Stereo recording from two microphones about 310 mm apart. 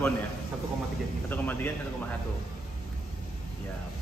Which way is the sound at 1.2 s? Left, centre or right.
Centre.